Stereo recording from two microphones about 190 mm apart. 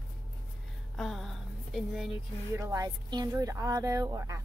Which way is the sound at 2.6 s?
15° right (ahead or behind).